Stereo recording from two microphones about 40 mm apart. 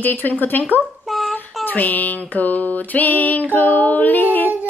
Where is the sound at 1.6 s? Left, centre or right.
Left.